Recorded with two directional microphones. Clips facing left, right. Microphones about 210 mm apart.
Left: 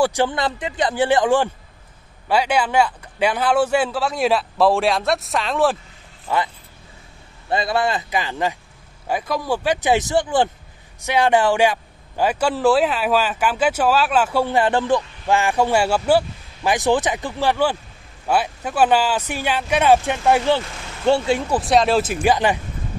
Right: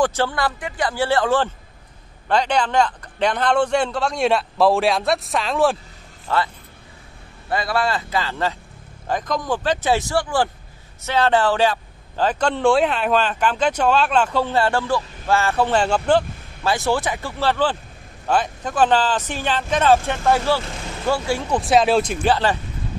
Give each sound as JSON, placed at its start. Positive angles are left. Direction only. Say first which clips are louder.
{"t": 0.0, "sound": "a man's voice", "louder": "left 1 dB", "side_deg": 15}
{"t": 6.2, "sound": "a man's voice", "louder": "even", "side_deg": 15}
{"t": 21.5, "sound": "a man's voice", "louder": "right 2 dB", "side_deg": 0}